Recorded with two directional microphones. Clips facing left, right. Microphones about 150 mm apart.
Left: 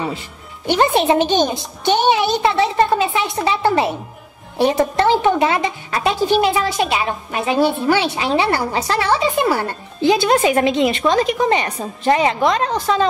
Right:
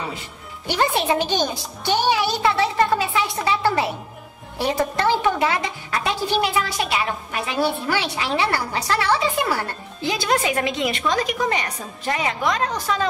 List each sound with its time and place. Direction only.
0.7 s a child's voice: 25° left (ahead or behind)
3.4 s music: 20° left (ahead or behind)
4.6 s a woman's voice: 20° left (ahead or behind)